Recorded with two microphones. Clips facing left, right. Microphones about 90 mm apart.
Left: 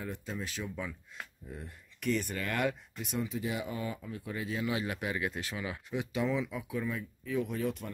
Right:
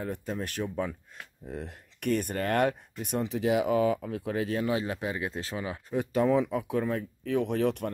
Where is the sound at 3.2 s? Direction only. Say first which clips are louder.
Right 10 dB; 85° right.